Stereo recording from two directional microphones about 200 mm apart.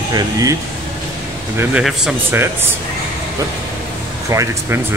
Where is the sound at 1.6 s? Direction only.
5° right (ahead or behind).